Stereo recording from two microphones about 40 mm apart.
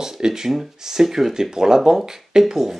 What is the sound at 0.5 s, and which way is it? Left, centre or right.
Speech, centre.